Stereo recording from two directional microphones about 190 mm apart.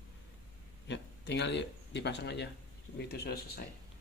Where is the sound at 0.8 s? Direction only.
65° left (ahead or behind).